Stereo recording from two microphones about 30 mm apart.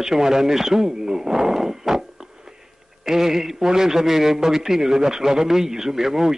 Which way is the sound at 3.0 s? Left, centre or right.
Centre.